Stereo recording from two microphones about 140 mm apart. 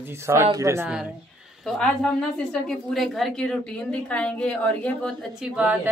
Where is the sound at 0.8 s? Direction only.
5° right (ahead or behind); by 5.1 s 10° left (ahead or behind).